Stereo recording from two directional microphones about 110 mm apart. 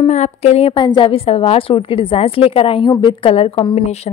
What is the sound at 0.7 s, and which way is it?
Speech, 50° left (ahead or behind).